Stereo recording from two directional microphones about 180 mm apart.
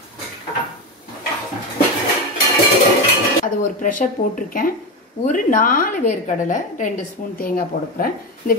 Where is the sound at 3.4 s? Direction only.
45° left (ahead or behind).